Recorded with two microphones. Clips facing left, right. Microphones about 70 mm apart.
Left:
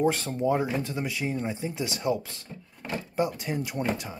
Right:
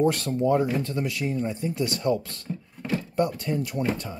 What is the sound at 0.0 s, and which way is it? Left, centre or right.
Speech, centre.